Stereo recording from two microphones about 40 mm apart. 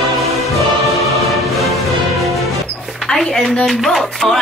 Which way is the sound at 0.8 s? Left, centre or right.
Centre.